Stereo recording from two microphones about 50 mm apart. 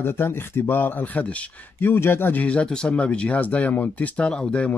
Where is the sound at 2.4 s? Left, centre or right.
Left.